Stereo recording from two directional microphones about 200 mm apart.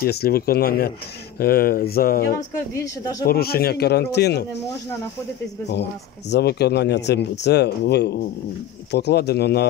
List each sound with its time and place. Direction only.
0.0 s speech: 50° left (ahead or behind)
2.3 s speech: 15° left (ahead or behind)
3.3 s speech: 50° left (ahead or behind)
5.7 s speech: 60° left (ahead or behind)